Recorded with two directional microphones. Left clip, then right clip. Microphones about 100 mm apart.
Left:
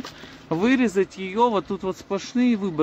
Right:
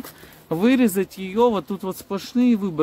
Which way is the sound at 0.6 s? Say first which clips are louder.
Right 1 dB; 35° right (ahead or behind).